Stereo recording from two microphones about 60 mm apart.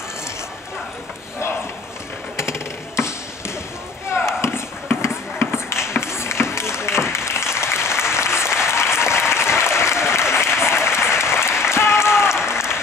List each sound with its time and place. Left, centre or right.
4.1 s chop: left
5.0 s a sound: left
7.1 s applause: left